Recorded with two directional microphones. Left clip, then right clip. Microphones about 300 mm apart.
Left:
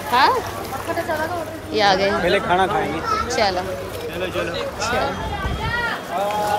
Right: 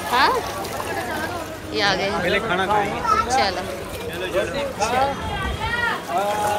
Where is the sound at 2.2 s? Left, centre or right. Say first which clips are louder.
Left 3 dB; left.